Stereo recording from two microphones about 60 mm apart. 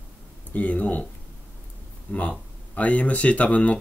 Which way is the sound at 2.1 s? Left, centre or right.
Left.